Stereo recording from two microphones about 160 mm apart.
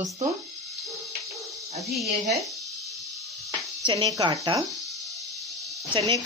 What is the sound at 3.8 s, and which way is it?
Speech, 30° right (ahead or behind).